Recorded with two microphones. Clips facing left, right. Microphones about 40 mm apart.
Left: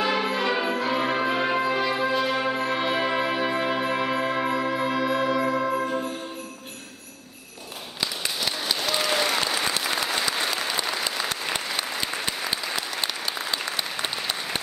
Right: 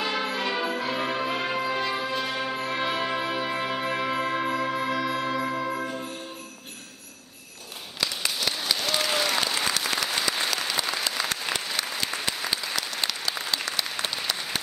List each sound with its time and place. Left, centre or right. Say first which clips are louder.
0.0 s music: left 4 dB; centre
8.8 s applause: left 2 dB; centre